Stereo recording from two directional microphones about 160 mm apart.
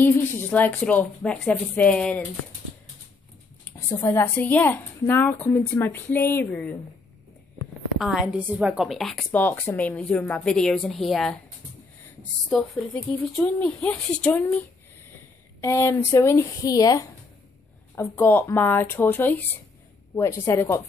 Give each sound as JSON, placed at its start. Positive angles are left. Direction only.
{"t": 0.0, "sound": "speech", "side_deg": 10}
{"t": 3.6, "sound": "speech", "side_deg": 20}
{"t": 8.0, "sound": "a woman's voice", "side_deg": -5}
{"t": 15.6, "sound": "speech", "side_deg": 15}